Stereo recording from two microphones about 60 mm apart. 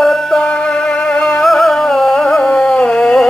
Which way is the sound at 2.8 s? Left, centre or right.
Centre.